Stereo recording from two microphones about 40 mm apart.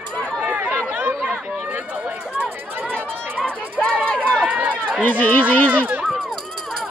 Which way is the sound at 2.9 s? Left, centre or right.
Left.